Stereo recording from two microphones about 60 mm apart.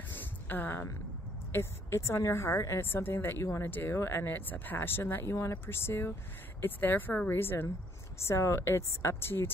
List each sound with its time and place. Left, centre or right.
0.1 s a sound: left
1.5 s a woman's voice: left
2.9 s speech: left
8.2 s a woman's voice: left
8.6 s speech: left